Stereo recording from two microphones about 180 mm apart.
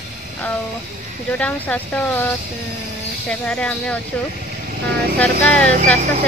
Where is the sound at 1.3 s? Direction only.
10° left (ahead or behind).